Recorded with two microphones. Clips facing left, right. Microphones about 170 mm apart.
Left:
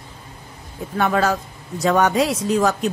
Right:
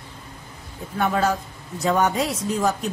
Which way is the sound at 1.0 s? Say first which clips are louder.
Left 2 dB; 90° left.